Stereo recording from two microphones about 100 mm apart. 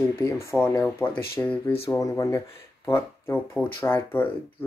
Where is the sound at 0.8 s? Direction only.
15° left (ahead or behind).